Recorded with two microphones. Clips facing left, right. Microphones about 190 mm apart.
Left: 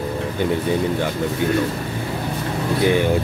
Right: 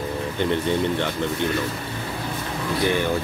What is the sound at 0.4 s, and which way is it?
Speech, 5° left (ahead or behind).